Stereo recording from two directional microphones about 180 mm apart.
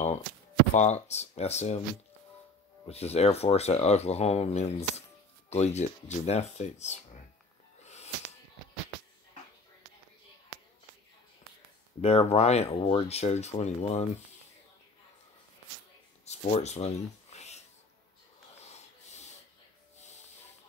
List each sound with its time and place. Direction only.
0.7 s speech: 40° left (ahead or behind)
2.9 s speech: 35° left (ahead or behind)
7.8 s a sound: 40° left (ahead or behind)
12.0 s speech: 35° left (ahead or behind)
16.3 s a sound: 35° left (ahead or behind)
18.6 s snort: 40° left (ahead or behind)